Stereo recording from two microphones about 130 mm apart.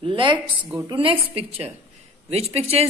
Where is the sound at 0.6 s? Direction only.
10° right (ahead or behind).